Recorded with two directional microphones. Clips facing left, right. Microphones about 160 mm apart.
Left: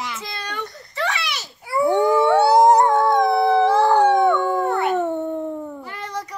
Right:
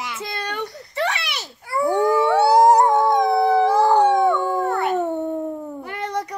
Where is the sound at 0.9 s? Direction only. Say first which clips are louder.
Right 1 dB; 60° right (ahead or behind).